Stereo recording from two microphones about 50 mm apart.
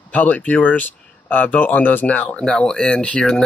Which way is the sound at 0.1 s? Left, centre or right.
Left.